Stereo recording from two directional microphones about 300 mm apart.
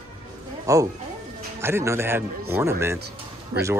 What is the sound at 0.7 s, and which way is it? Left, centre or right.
Speech, centre.